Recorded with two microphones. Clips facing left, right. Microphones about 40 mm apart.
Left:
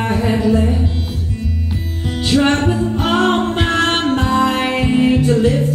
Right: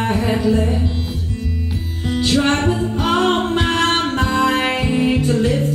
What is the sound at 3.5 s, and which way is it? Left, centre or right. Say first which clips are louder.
Music: left 1 dB; left.